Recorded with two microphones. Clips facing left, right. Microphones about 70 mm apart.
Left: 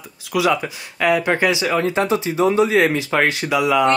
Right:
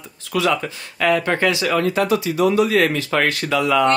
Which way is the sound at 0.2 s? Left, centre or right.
Centre.